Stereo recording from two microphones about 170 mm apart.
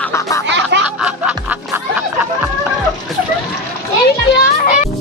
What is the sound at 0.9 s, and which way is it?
Music, 5° right (ahead or behind).